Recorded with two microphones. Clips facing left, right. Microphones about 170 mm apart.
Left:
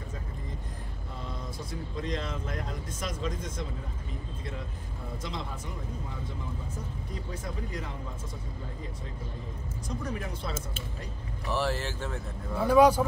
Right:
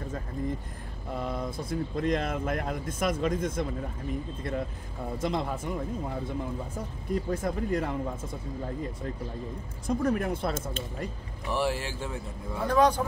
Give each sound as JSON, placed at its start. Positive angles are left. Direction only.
{"t": 1.1, "sound": "speech", "side_deg": -60}
{"t": 5.2, "sound": "speech", "side_deg": -55}
{"t": 7.2, "sound": "speech", "side_deg": -55}
{"t": 9.8, "sound": "speech", "side_deg": -55}
{"t": 11.4, "sound": "speech", "side_deg": -15}
{"t": 12.5, "sound": "speech", "side_deg": 10}